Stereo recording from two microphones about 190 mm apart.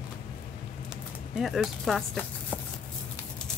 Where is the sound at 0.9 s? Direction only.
Centre (ahead or behind).